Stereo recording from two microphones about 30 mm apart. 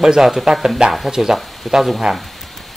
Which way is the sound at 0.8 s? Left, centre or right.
Right.